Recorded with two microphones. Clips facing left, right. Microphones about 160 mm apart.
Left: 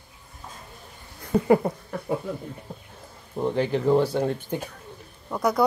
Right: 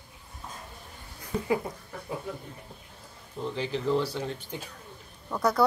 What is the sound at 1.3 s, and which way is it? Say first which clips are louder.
Speech: left 9 dB; 55° left (ahead or behind).